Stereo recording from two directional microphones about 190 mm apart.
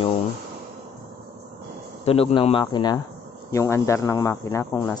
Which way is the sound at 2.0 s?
30° left (ahead or behind).